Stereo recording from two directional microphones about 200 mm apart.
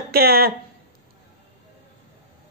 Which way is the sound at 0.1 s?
50° right (ahead or behind).